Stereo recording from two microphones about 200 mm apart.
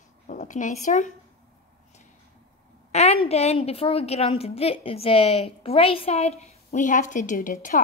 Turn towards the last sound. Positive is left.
turn(degrees=40)  # may be behind; listen again after turning